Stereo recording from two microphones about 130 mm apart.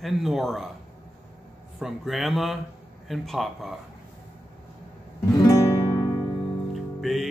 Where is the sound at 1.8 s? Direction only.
Centre (ahead or behind).